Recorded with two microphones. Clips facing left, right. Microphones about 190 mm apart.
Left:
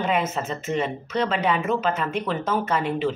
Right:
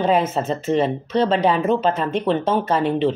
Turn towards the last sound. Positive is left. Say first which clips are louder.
# right 5 dB
turn(degrees=-30)  # may be behind; listen again after turning